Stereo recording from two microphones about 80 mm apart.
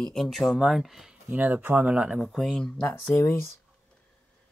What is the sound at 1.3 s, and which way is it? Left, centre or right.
Speech, centre.